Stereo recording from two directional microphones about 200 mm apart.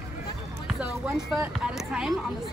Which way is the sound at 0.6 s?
5° right (ahead or behind).